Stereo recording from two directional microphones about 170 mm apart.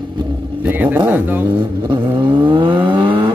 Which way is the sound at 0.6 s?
10° right (ahead or behind).